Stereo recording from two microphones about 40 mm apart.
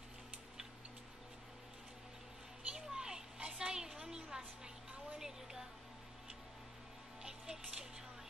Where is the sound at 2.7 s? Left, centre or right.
Centre.